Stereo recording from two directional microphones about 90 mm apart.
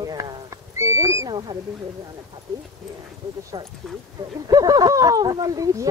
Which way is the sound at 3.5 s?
90° right.